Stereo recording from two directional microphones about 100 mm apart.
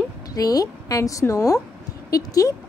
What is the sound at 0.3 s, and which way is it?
A woman's voice, 40° left (ahead or behind).